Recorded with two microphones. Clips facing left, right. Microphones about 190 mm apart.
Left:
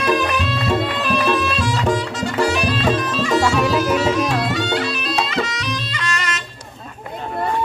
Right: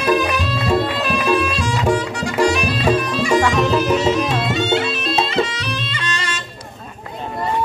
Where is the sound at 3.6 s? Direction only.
5° left (ahead or behind).